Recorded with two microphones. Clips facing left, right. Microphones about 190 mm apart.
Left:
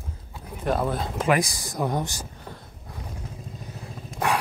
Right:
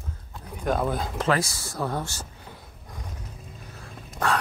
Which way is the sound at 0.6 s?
Centre (ahead or behind).